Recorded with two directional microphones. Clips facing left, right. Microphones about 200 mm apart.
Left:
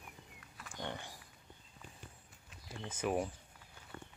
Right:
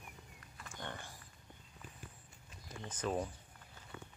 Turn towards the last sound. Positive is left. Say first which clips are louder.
# left 2 dB
turn(degrees=10)  # may be behind; listen again after turning